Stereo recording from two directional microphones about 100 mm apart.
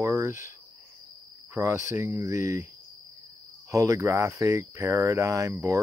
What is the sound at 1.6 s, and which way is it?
Speech, 30° right (ahead or behind).